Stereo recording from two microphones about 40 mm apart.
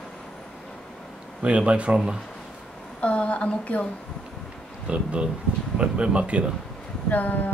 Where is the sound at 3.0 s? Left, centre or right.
Left.